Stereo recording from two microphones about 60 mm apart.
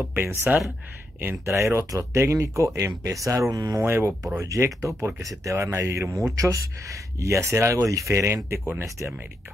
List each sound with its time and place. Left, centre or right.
0.0 s speech: right
1.4 s speech: right
3.8 s speech: right
4.4 s speech: right